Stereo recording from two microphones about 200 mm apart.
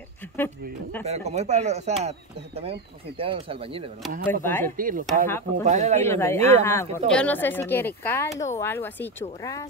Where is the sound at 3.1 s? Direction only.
30° right (ahead or behind).